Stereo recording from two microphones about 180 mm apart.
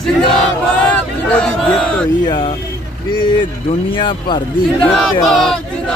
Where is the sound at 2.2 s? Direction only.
25° left (ahead or behind).